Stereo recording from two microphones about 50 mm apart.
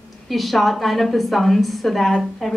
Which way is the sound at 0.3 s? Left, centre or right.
Centre.